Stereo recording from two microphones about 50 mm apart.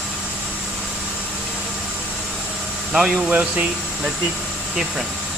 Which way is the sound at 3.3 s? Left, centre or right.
Right.